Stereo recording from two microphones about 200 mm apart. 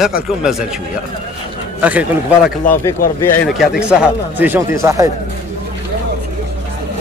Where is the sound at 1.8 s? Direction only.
5° right (ahead or behind).